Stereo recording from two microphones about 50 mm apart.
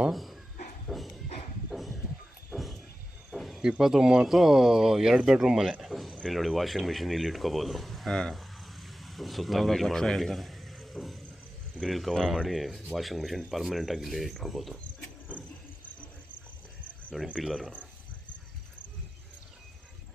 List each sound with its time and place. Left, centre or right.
0.1 s speech: centre
0.8 s a sound: centre
3.8 s speech: centre
15.3 s vehicle: left
17.4 s speech: centre